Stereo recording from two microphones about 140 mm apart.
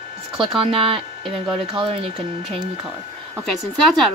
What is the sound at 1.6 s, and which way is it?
Speech, 40° right (ahead or behind).